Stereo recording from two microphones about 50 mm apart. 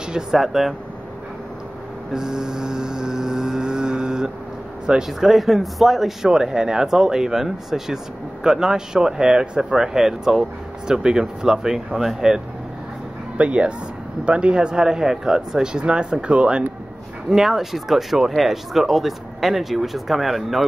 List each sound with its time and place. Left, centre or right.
0.1 s speech: centre
2.1 s mantra: centre
4.8 s speech: centre
6.2 s speech: centre
13.4 s speech: right
17.3 s speech: centre